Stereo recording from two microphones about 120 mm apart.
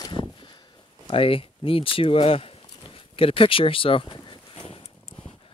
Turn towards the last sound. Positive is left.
turn(degrees=45)  # may be behind; listen again after turning